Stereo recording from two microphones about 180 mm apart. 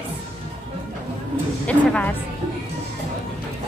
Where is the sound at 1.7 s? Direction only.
5° left (ahead or behind).